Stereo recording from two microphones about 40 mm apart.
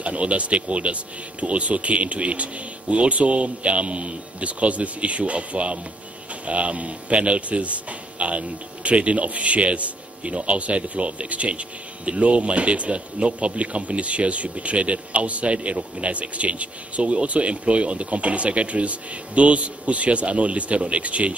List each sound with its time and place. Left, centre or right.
0.0 s speech: right